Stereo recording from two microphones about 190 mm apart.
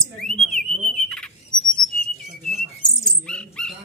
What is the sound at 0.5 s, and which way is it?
Alarm, 5° left (ahead or behind).